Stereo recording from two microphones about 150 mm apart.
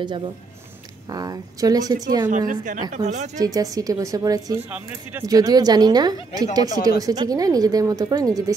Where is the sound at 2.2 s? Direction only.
60° right (ahead or behind).